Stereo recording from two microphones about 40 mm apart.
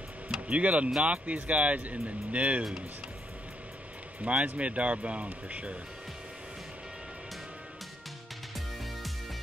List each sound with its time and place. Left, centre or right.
0.5 s speech: right
4.2 s speech: right